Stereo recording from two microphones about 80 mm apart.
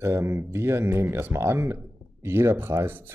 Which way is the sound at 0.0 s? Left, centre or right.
Right.